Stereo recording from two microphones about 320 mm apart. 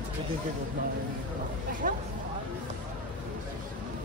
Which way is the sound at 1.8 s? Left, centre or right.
Right.